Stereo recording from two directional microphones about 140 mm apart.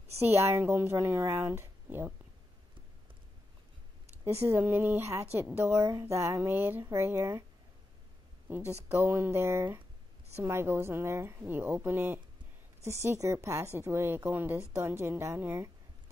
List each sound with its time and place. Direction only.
0.2 s speech: 15° right (ahead or behind)
4.2 s speech: 20° right (ahead or behind)
8.5 s a woman's voice: 10° right (ahead or behind)